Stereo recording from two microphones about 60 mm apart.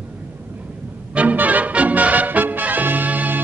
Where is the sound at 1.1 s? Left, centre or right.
Right.